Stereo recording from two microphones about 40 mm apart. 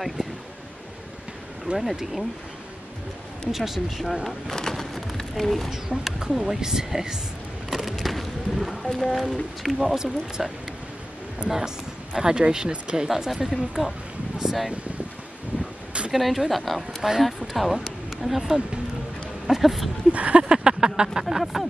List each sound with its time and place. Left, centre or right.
1.7 s speech: right
3.5 s a woman's voice: centre
4.6 s a sound: centre
5.7 s speech: centre
9.9 s speech: centre
14.4 s a sound: centre
16.1 s a woman's voice: centre
20.1 s a sound: right
20.4 s speech: centre